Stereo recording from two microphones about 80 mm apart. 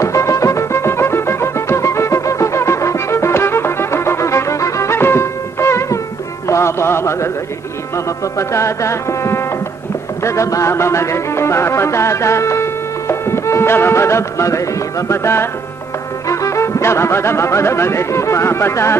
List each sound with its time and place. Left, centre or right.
0.0 s music: left
6.4 s a sound: left
8.4 s music: left
16.3 s speech: left